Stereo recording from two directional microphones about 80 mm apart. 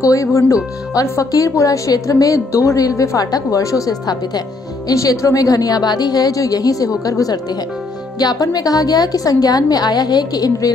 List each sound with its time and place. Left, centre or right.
0.0 s a woman's voice: left